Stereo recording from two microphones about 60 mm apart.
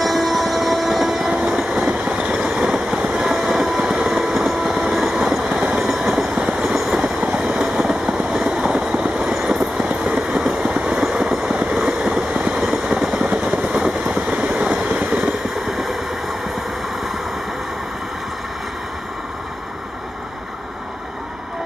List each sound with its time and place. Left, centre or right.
0.0 s train: centre
2.7 s vehicle: centre
4.7 s train: centre
5.8 s train: centre
8.2 s vehicle: centre
11.1 s train: centre
12.4 s vehicle: centre
15.7 s vehicle: centre